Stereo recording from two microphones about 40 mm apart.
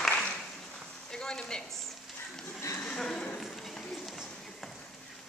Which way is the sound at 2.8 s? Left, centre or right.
Centre.